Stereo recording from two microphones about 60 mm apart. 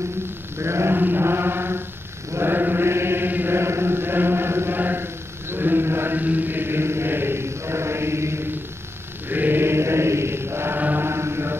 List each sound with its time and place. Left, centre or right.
0.6 s sheep: right
0.9 s chant: right
9.3 s mantra: right
10.8 s chant: right
11.1 s mantra: right